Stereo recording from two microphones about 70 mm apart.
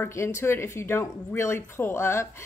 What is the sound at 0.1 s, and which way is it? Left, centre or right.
A woman's voice, left.